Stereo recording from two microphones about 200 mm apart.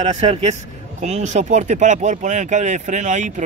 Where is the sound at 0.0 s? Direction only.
30° right (ahead or behind).